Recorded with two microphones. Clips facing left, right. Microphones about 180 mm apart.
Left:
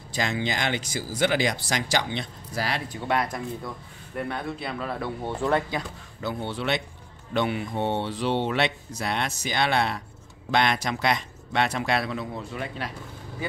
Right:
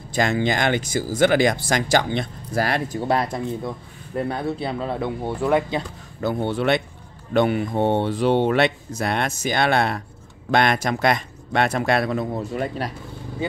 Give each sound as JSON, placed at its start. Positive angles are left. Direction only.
{"t": 0.1, "sound": "speech", "side_deg": -50}
{"t": 3.1, "sound": "speech", "side_deg": -30}
{"t": 6.2, "sound": "speech", "side_deg": -50}